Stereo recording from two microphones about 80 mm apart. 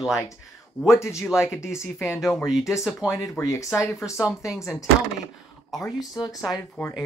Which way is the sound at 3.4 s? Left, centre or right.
Left.